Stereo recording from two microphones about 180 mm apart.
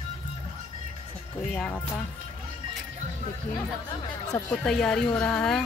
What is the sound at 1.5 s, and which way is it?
Speech, centre (ahead or behind).